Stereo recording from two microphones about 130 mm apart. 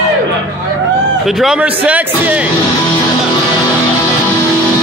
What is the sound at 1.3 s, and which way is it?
A man's voice, 5° right (ahead or behind).